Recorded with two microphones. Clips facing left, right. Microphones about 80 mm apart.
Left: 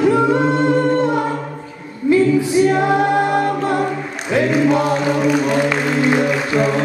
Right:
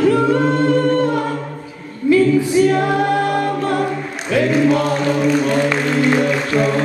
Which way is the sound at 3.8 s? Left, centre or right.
Centre.